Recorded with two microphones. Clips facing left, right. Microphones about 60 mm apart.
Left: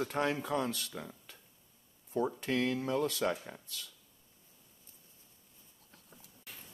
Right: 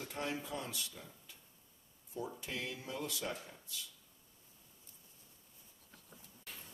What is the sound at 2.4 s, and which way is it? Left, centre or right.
Speech, left.